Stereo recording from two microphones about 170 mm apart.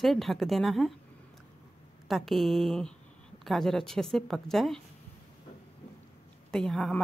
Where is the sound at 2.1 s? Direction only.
Centre (ahead or behind).